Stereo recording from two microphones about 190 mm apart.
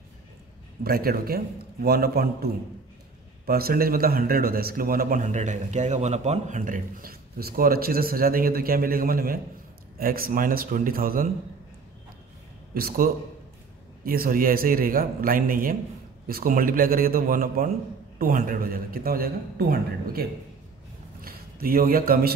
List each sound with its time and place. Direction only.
0.8 s a man's voice: 55° right (ahead or behind)
12.7 s a man's voice: 50° right (ahead or behind)